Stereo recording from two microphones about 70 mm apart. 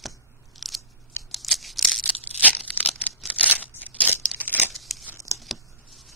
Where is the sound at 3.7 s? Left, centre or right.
Left.